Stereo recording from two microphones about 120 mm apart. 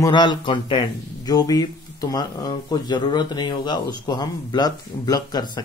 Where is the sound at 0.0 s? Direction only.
40° left (ahead or behind).